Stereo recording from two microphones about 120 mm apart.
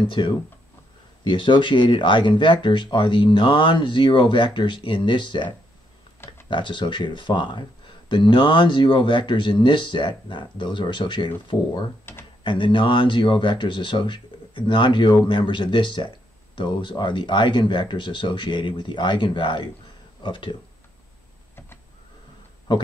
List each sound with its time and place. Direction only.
0.1 s speech: 40° left (ahead or behind)
6.5 s speech: 40° left (ahead or behind)